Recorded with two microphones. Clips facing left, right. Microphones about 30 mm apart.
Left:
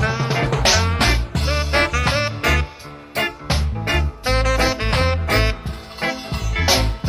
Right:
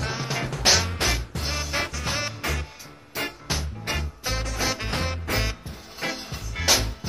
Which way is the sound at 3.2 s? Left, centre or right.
Left.